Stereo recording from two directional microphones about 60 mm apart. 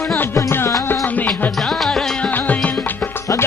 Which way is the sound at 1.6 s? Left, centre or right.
Centre.